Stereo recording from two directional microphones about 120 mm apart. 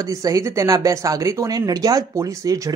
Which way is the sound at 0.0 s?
30° right (ahead or behind).